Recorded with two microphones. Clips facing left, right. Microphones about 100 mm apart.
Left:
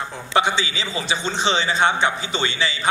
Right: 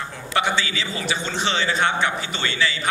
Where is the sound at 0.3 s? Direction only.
20° left (ahead or behind).